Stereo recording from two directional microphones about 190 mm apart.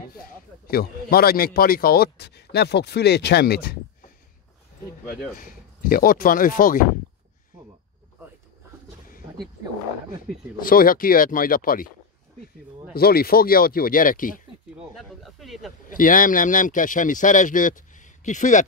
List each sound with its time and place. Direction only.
0.2 s speech: 55° left (ahead or behind)
5.3 s speech: 50° left (ahead or behind)
10.6 s speech: 50° left (ahead or behind)
12.9 s speech: 55° left (ahead or behind)
15.0 s a sound: centre (ahead or behind)
15.9 s speech: 45° left (ahead or behind)